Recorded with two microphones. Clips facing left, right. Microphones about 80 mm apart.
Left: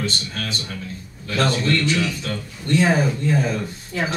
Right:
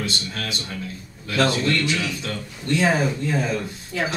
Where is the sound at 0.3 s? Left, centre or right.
Centre.